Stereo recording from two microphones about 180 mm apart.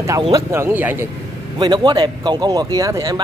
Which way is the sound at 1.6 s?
25° right (ahead or behind).